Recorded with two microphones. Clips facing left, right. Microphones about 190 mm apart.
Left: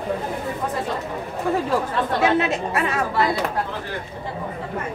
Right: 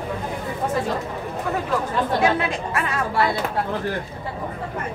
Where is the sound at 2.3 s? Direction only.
25° left (ahead or behind).